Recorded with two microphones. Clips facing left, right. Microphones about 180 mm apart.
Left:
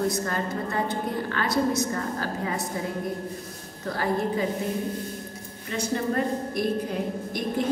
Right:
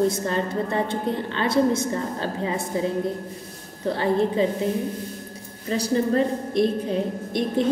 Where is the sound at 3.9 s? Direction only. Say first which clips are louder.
Right 5 dB; 25° right (ahead or behind).